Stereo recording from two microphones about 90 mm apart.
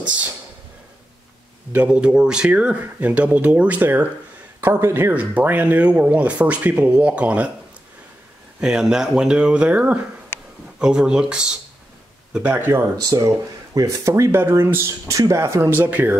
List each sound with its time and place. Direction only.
1.7 s a man's voice: 15° right (ahead or behind); by 5.1 s 30° right (ahead or behind)
5.1 s speech: 15° right (ahead or behind)
8.5 s speech: 5° right (ahead or behind)
12.5 s a man's voice: 25° right (ahead or behind)
13.1 s speech: 50° right (ahead or behind)
13.7 s speech: 35° right (ahead or behind)